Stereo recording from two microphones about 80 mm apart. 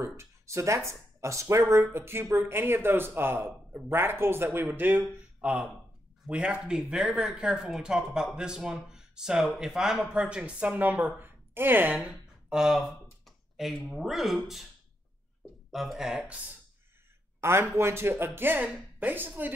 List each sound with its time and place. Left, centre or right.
0.0 s a man's voice: right
12.0 s speech: centre
15.7 s speech: centre
17.4 s a man's voice: right